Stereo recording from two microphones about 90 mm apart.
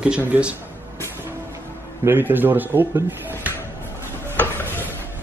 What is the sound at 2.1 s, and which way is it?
Speech, 20° right (ahead or behind).